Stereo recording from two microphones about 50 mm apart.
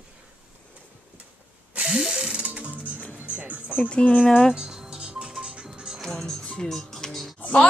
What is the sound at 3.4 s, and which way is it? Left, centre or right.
Music, right.